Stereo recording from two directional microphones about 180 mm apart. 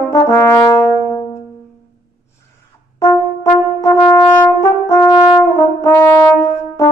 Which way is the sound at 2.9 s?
15° left (ahead or behind).